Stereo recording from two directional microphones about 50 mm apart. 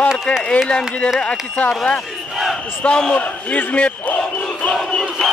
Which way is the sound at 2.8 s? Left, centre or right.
Left.